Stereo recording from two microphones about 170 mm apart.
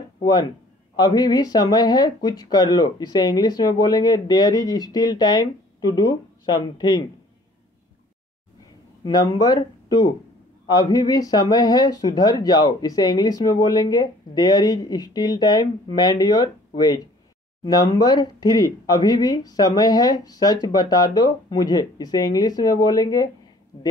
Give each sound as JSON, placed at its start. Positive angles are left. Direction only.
{"t": 0.2, "sound": "speech", "side_deg": 25}
{"t": 9.0, "sound": "speech", "side_deg": 25}